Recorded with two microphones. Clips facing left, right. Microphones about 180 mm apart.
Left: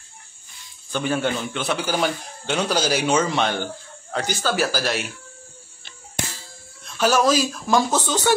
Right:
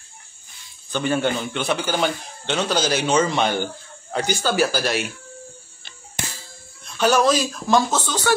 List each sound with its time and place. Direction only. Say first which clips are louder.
0.9 s a man's voice: right 1 dB; centre (ahead or behind)
7.0 s a man's voice: right 1 dB; 5° left (ahead or behind)
7.9 s speech: left 1 dB; 15° left (ahead or behind)